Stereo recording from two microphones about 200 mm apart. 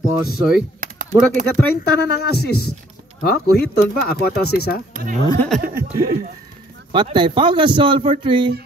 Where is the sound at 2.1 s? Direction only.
55° left (ahead or behind).